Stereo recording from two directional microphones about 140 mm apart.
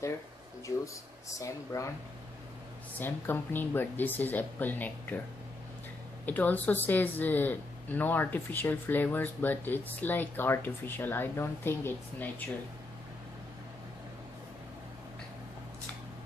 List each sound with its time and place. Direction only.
1.3 s speech: 20° left (ahead or behind)
3.0 s speech: 15° left (ahead or behind)
6.2 s speech: 10° left (ahead or behind)